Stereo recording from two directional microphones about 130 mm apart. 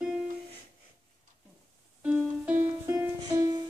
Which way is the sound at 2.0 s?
10° right (ahead or behind).